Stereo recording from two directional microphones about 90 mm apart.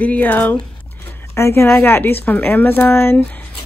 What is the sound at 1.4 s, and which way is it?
Speech, 30° left (ahead or behind).